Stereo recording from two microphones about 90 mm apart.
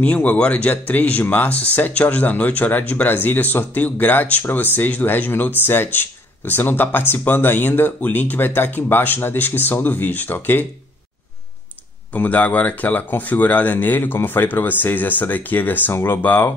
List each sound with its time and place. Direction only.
0.0 s speech: 15° left (ahead or behind)
12.1 s speech: 20° left (ahead or behind)